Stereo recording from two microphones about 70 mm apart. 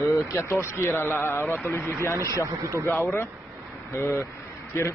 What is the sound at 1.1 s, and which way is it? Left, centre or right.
Speech, left.